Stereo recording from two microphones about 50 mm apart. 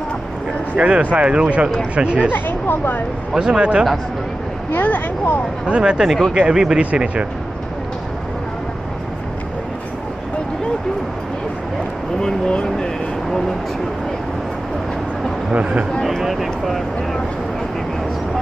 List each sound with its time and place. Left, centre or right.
0.7 s speech: right
2.3 s speech: left
3.3 s speech: centre
4.7 s speech: left
5.7 s speech: centre
12.2 s speech: centre
12.6 s vehicle: centre
15.5 s speech: right
16.2 s speech: centre